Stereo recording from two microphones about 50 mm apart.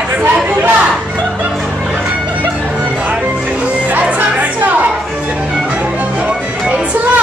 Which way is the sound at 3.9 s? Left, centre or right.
Right.